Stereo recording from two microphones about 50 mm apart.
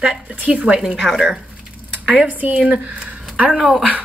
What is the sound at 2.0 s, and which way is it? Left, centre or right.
Speech, right.